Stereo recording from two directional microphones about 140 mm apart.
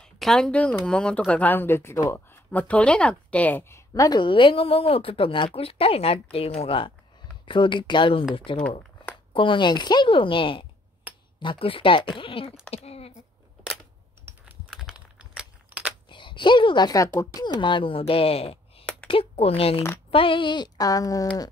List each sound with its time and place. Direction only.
0.0 s speech: 5° left (ahead or behind); by 12.5 s 40° left (ahead or behind)
12.7 s a sound: 45° left (ahead or behind)
14.7 s computer keyboard: 5° right (ahead or behind)
16.1 s speech: 35° left (ahead or behind)
17.6 s speech: 35° left (ahead or behind)